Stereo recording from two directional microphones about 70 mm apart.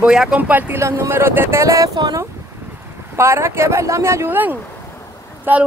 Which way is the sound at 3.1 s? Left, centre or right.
Right.